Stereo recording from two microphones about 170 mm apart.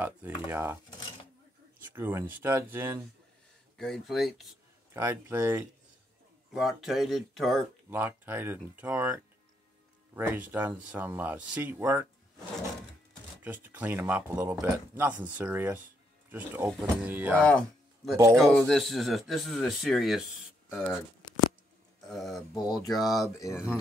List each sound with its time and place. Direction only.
0.0 s speech: 10° right (ahead or behind)
1.8 s speech: 15° right (ahead or behind)
3.7 s speech: centre (ahead or behind)
4.9 s speech: 10° right (ahead or behind)
6.5 s speech: centre (ahead or behind)
7.9 s speech: 15° right (ahead or behind)
13.4 s speech: 10° right (ahead or behind)
17.4 s speech: 5° left (ahead or behind)
22.0 s a sound: centre (ahead or behind)
22.5 s speech: 20° left (ahead or behind)
22.8 s speech: centre (ahead or behind)
23.3 s speech: 20° left (ahead or behind)